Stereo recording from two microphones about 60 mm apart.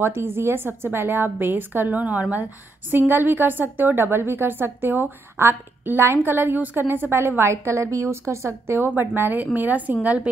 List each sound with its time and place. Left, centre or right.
0.0 s a woman's voice: right